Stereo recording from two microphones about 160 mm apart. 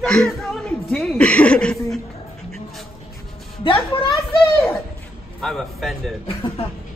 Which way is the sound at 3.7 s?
35° left (ahead or behind).